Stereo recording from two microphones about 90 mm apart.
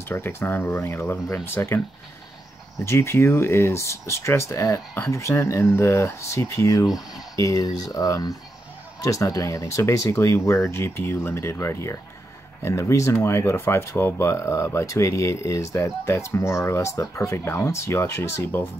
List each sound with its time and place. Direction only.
0.1 s speech: 25° left (ahead or behind)
2.8 s speech: 30° left (ahead or behind)